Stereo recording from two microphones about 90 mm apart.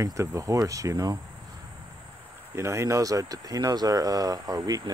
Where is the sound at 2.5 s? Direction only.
35° right (ahead or behind).